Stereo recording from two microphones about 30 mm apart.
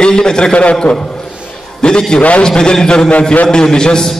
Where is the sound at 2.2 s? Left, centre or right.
Left.